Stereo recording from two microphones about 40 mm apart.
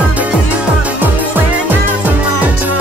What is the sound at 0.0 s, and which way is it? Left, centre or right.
Music, right.